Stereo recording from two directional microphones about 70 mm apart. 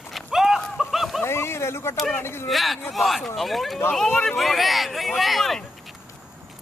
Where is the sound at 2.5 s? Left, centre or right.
Centre.